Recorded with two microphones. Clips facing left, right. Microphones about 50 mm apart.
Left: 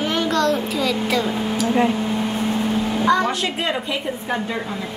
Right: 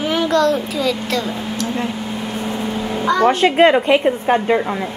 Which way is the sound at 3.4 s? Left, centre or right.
Right.